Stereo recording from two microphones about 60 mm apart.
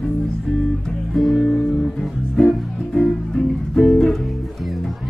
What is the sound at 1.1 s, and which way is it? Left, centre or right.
Music, centre.